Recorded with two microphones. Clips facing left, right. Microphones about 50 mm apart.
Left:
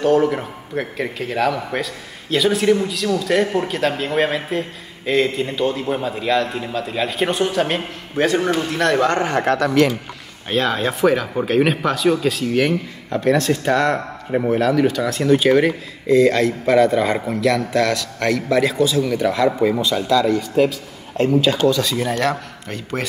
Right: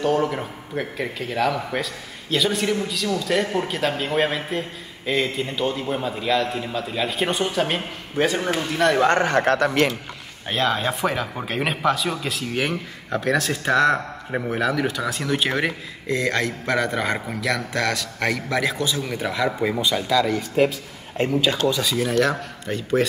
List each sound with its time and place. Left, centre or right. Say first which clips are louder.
0.0 s a man's voice: left 5 dB; centre
9.2 s speech: left 1 dB; right
10.5 s a man's voice: left 3 dB; centre
20.3 s speech: left 3 dB; centre